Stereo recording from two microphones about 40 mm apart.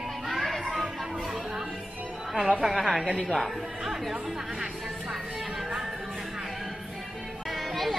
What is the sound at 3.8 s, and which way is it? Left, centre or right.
Speech, centre.